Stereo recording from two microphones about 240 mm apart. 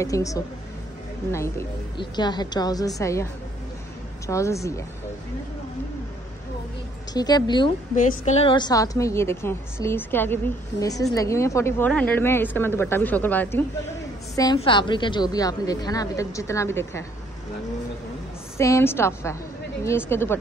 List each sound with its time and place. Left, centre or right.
0.0 s a woman's voice: centre
4.3 s a woman's voice: centre
7.2 s a woman's voice: centre
7.9 s a woman's voice: left; by 17.0 s centre
18.6 s a woman's voice: centre